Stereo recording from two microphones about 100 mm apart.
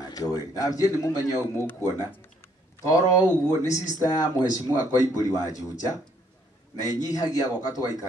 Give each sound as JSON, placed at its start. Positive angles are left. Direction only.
{"t": 0.0, "sound": "speech", "side_deg": 40}
{"t": 2.8, "sound": "speech", "side_deg": 35}